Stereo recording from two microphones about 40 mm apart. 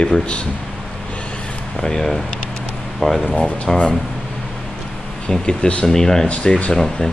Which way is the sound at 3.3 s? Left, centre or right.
Left.